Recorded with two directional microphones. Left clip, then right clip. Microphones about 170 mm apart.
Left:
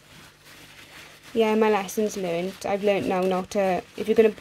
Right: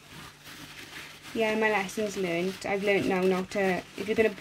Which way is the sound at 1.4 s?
50° left (ahead or behind).